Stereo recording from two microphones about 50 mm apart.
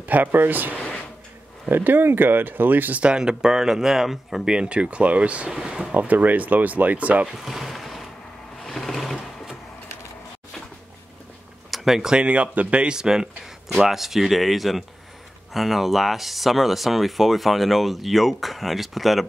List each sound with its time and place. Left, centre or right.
0.0 s speech: right
0.7 s a sound: left
1.7 s speech: right
3.0 s speech: centre
4.6 s speech: right
5.5 s speech: centre
5.9 s speech: right
7.3 s boat: centre
8.6 s vehicle: centre
11.7 s speech: centre